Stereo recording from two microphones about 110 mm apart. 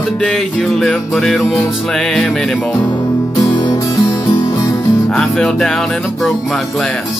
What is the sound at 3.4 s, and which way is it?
Music, 45° left (ahead or behind).